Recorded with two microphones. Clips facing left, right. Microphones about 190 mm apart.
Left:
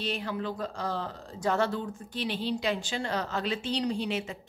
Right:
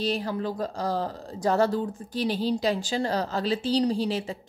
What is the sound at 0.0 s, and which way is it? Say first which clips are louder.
Speech: right 5 dB; 35° right (ahead or behind).